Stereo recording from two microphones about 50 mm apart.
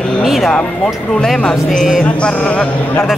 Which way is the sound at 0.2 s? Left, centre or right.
Centre.